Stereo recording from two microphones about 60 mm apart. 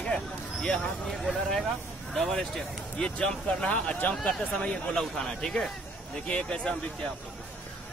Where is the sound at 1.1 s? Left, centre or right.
Centre.